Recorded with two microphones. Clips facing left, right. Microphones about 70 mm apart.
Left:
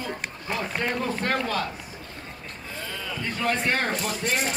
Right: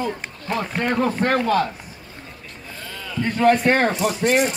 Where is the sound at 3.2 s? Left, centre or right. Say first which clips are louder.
Right 10 dB; right.